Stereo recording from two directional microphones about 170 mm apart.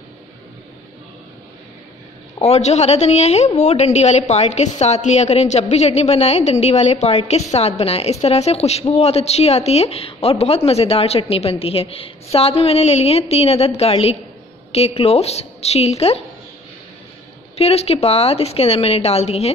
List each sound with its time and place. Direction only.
2.4 s a woman's voice: 40° left (ahead or behind)
17.6 s a woman's voice: 35° left (ahead or behind)